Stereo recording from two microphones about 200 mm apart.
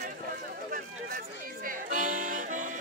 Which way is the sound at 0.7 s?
45° right (ahead or behind).